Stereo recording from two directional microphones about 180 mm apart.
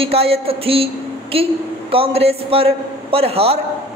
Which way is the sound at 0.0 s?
35° right (ahead or behind).